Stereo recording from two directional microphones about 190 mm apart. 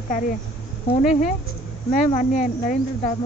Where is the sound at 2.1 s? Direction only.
45° left (ahead or behind).